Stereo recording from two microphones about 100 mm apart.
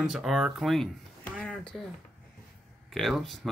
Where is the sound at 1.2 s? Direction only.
15° left (ahead or behind).